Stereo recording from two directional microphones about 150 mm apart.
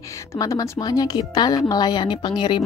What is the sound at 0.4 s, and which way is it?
Speech, 25° left (ahead or behind).